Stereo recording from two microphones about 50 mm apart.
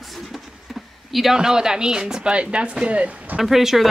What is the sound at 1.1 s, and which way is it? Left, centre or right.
Speech, centre.